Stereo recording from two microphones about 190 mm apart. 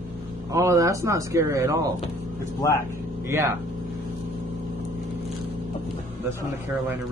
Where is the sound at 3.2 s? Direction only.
15° right (ahead or behind).